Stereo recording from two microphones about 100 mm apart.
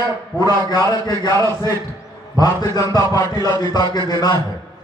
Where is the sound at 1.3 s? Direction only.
40° right (ahead or behind).